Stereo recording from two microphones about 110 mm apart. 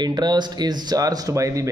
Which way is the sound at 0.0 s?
40° right (ahead or behind).